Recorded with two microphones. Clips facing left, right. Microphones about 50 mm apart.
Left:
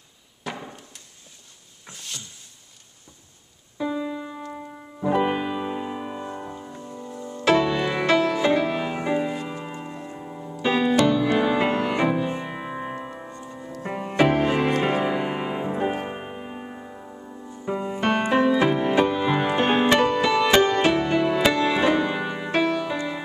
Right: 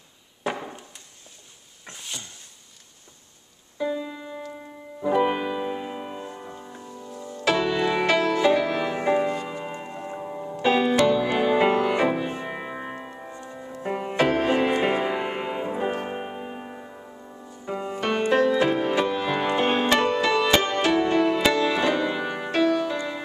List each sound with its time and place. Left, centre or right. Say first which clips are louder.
0.4 s a sound: right 4 dB; centre
2.0 s a sound: right 1 dB; centre
3.7 s keyboard: left 1 dB; centre
5.0 s music: even; centre
6.9 s music: left 2 dB; centre
7.5 s music: even; centre
8.5 s music: even; centre
9.1 s music: right 2 dB; centre
9.7 s music: right 1 dB; centre
14.1 s music: left 3 dB; centre
14.6 s music: even; centre
18.0 s music: left 1 dB; centre
20.5 s music: left 3 dB; centre